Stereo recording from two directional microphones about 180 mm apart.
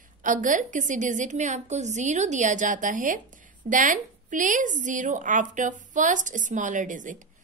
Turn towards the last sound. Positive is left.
turn(degrees=-45)  # may be behind; listen again after turning